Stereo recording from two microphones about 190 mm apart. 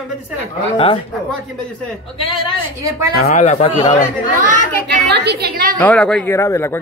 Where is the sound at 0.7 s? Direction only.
25° left (ahead or behind).